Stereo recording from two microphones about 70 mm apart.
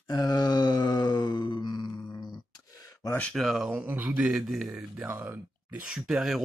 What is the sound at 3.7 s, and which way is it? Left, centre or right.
Speech, right.